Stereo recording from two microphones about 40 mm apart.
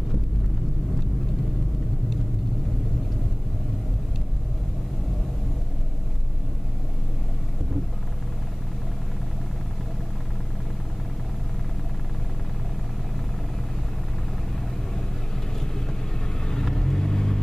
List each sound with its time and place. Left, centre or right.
16.6 s vehicle: centre